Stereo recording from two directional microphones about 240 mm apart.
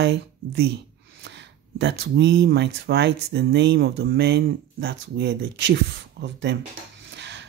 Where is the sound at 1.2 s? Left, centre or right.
Right.